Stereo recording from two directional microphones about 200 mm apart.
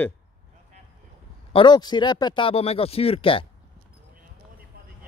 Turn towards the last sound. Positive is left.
turn(degrees=25)  # may be behind; listen again after turning